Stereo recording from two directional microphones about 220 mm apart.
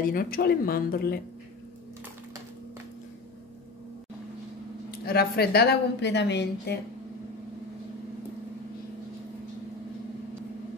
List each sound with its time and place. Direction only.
0.0 s a woman's voice: 40° left (ahead or behind)
5.0 s a woman's voice: 45° left (ahead or behind)